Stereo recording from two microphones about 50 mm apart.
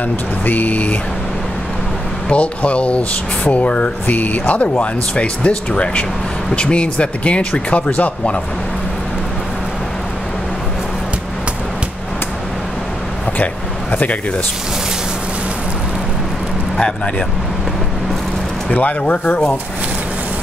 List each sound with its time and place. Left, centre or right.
0.5 s a sound: left
2.2 s speech: left
18.7 s speech: left